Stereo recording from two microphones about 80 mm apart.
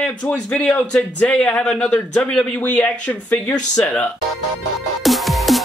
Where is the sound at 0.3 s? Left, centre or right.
Centre.